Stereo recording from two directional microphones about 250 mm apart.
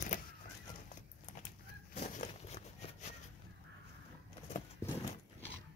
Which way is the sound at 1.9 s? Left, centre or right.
Left.